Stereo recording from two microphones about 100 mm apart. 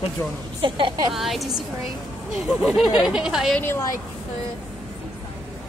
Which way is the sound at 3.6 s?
25° left (ahead or behind).